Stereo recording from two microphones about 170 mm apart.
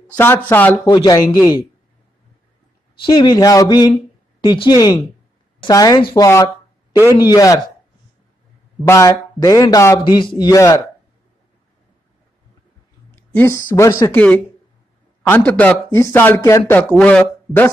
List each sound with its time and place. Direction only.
0.5 s speech: 10° left (ahead or behind)
0.8 s a man's voice: 25° left (ahead or behind)
3.1 s a man's voice: 25° left (ahead or behind)
8.8 s a man's voice: 15° left (ahead or behind)
13.1 s speech: 10° left (ahead or behind)